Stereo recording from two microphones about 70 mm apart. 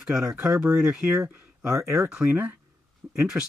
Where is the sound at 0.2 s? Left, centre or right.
Right.